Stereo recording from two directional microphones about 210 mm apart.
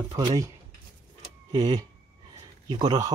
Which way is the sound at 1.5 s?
20° right (ahead or behind).